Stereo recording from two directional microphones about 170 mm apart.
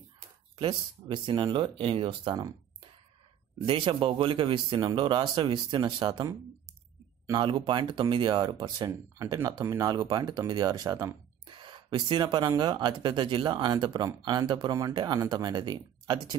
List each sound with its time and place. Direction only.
0.6 s speech: 30° right (ahead or behind)